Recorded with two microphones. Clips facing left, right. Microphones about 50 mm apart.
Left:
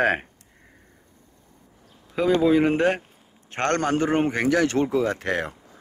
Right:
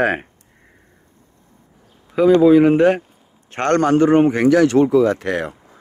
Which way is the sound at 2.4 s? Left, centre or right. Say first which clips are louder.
Right 7 dB; centre.